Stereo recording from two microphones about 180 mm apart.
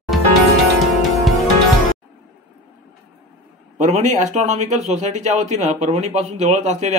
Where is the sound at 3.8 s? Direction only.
40° right (ahead or behind).